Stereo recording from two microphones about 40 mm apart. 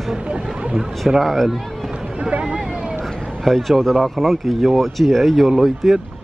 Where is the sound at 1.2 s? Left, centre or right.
Centre.